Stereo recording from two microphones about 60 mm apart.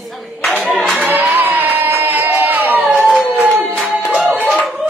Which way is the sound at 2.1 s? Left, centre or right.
Right.